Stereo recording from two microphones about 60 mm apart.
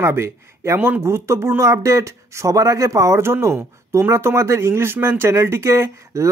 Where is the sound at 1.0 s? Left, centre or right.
Right.